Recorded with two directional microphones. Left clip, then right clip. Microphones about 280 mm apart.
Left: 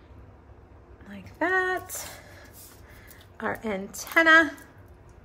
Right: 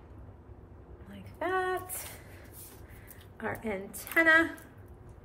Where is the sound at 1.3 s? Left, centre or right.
Left.